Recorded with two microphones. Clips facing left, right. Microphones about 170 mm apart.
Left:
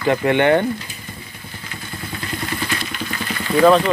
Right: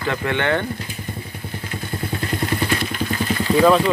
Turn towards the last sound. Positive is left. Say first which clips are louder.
# left 2 dB
turn(degrees=-5)  # may be behind; listen again after turning